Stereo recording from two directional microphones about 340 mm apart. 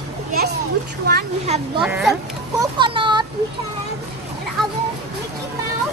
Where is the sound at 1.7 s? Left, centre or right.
Centre.